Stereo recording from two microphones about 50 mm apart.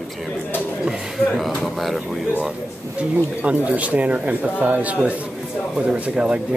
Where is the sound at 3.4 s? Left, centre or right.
Right.